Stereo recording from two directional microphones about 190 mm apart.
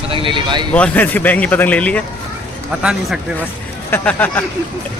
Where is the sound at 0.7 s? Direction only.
5° left (ahead or behind).